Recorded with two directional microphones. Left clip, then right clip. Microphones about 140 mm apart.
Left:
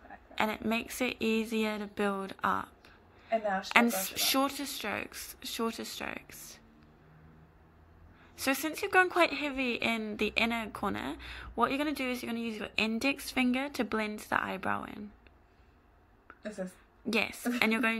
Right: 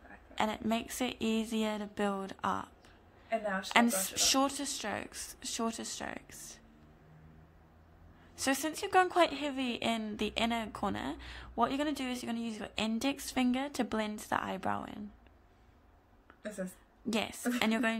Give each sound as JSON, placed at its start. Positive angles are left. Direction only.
{"t": 0.3, "sound": "speech", "side_deg": -25}
{"t": 8.4, "sound": "speech", "side_deg": -30}
{"t": 17.1, "sound": "speech", "side_deg": -25}